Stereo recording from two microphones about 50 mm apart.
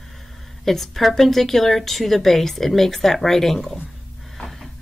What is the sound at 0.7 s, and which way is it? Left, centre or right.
A woman's voice, centre.